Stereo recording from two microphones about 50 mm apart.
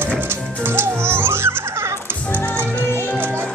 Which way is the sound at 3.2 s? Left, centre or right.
Right.